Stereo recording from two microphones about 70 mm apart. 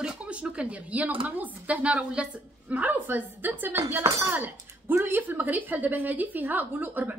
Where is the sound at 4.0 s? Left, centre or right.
Right.